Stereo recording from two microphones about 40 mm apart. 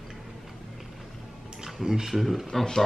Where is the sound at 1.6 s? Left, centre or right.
Centre.